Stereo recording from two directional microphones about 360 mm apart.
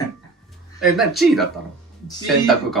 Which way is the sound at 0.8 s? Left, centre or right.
Centre.